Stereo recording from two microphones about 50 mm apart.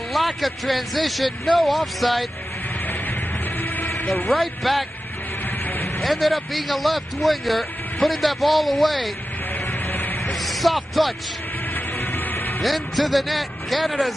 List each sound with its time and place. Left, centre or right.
0.1 s speech: centre
3.8 s a sound: left
4.3 s speech: centre
5.9 s speech: centre
9.9 s music: left
10.4 s speech: centre
11.7 s music: left
12.6 s speech: centre